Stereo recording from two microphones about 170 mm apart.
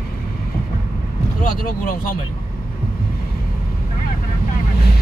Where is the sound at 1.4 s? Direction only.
55° left (ahead or behind).